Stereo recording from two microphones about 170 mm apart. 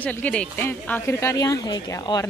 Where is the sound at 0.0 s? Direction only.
10° left (ahead or behind).